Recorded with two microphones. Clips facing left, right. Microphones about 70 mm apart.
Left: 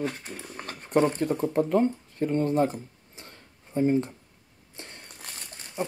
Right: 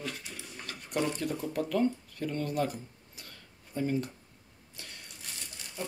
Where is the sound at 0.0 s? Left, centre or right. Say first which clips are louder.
Left 8 dB; left.